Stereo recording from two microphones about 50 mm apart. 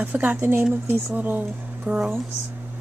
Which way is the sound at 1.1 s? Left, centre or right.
Right.